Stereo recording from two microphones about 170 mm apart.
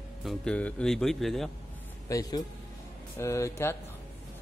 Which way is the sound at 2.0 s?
20° left (ahead or behind).